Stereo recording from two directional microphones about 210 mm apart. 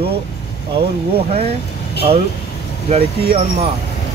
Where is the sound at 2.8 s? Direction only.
30° right (ahead or behind).